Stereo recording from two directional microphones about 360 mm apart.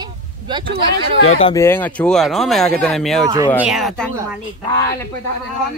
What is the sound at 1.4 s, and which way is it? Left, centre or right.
Speech, centre.